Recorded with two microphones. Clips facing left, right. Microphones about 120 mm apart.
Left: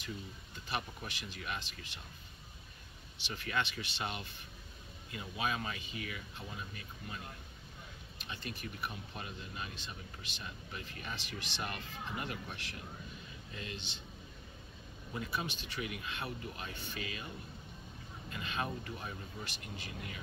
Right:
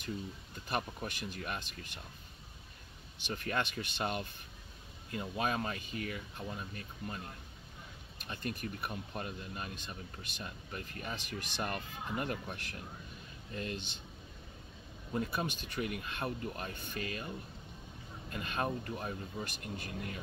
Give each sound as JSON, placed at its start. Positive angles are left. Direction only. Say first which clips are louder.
{"t": 0.7, "sound": "speech", "louder": "right 4 dB", "side_deg": -45}
{"t": 3.2, "sound": "speech", "louder": "right 2 dB", "side_deg": -45}
{"t": 8.2, "sound": "speech", "louder": "right 5 dB", "side_deg": -50}
{"t": 15.1, "sound": "speech", "louder": "right 4 dB", "side_deg": -50}
{"t": 18.3, "sound": "speech", "louder": "right 3 dB", "side_deg": -45}